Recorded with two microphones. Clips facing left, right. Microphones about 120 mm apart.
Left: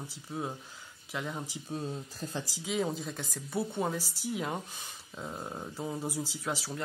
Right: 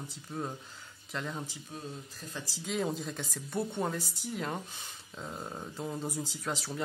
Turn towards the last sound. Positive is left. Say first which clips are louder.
# left 1 dB
turn(degrees=5)  # may be behind; listen again after turning